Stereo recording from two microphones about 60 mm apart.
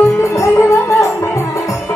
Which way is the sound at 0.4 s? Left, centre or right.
Left.